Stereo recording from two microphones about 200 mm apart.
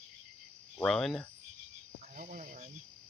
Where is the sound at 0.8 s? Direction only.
Centre (ahead or behind).